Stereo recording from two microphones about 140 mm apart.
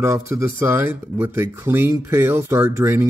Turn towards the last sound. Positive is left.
turn(degrees=-20)  # may be behind; listen again after turning